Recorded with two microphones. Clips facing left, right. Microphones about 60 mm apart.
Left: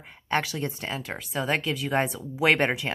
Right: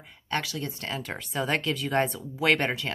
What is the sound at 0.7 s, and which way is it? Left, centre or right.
Speech, centre.